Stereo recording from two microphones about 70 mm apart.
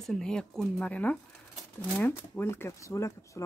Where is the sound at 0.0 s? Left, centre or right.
Centre.